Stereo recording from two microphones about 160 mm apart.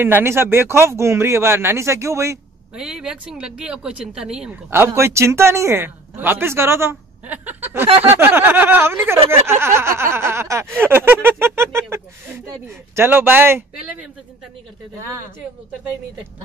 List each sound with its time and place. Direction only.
0.0 s speech: 15° right (ahead or behind)
2.7 s speech: 5° right (ahead or behind)
4.6 s speech: 15° right (ahead or behind)